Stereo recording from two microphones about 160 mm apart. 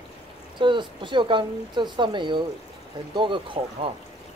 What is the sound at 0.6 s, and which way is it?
Speech, 30° right (ahead or behind).